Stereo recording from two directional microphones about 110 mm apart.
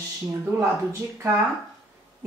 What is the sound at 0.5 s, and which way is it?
Speech, 25° right (ahead or behind).